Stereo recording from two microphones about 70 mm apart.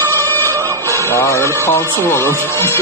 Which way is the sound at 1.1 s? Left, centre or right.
Left.